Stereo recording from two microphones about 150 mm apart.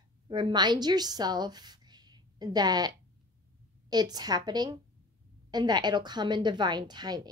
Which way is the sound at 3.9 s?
25° right (ahead or behind).